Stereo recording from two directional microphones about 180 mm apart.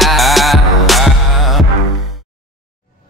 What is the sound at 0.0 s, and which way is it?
Music, centre (ahead or behind).